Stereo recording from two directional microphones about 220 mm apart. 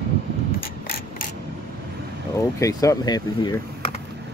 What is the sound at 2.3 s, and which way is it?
Speech, 15° left (ahead or behind).